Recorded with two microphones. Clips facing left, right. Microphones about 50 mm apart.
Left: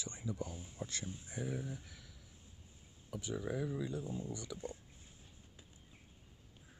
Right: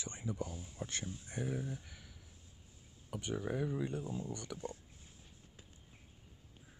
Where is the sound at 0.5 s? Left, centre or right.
Left.